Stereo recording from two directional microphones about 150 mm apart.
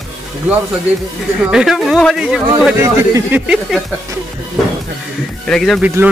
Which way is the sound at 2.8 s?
15° right (ahead or behind).